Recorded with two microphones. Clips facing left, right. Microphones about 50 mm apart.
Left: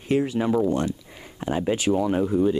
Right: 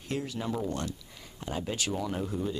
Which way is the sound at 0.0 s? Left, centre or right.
Left.